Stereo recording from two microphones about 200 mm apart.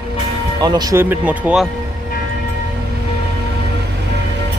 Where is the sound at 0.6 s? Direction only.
20° right (ahead or behind).